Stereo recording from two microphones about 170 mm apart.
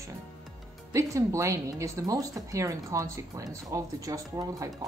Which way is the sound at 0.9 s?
15° right (ahead or behind).